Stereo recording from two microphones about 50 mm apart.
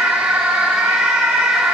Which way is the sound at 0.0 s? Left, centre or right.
Centre.